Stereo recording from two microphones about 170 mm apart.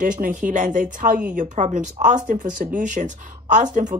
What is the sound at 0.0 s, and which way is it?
Speech, 50° right (ahead or behind).